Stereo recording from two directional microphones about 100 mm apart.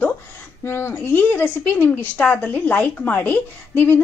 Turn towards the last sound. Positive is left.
turn(degrees=20)  # may be behind; listen again after turning